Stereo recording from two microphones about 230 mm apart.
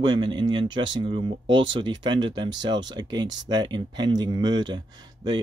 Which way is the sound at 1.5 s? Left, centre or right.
Right.